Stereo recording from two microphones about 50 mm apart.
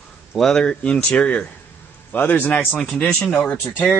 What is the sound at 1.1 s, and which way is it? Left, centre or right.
Speech, left.